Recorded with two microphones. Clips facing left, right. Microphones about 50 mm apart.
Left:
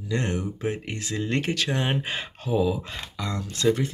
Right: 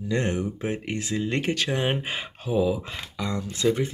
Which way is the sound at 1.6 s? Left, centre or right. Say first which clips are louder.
Right 1 dB; centre.